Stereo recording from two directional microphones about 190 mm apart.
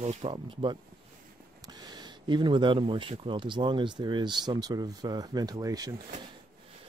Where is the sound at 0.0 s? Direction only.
35° right (ahead or behind); by 5.9 s 20° right (ahead or behind).